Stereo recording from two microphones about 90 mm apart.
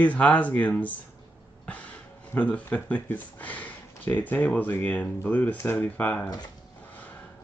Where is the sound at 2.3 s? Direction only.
15° left (ahead or behind).